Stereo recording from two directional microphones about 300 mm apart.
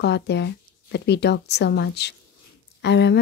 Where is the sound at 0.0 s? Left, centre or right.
Left.